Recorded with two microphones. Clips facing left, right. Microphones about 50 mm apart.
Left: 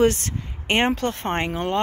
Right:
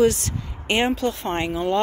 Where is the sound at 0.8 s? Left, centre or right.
Left.